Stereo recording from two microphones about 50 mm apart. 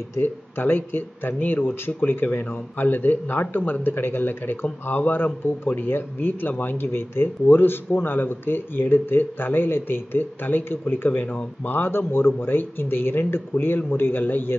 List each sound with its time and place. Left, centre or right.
0.2 s speech: left